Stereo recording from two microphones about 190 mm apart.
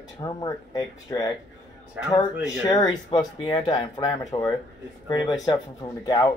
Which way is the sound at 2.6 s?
20° left (ahead or behind).